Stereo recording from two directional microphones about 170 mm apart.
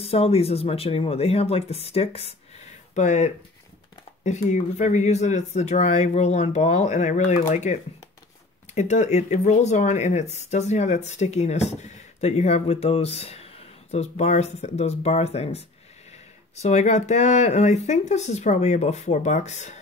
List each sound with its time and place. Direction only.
0.0 s speech: 35° left (ahead or behind)
16.6 s speech: 40° left (ahead or behind)